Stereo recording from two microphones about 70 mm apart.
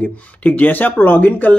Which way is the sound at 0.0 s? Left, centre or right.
Left.